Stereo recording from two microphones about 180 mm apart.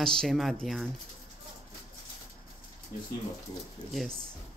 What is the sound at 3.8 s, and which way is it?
Speech, 25° left (ahead or behind).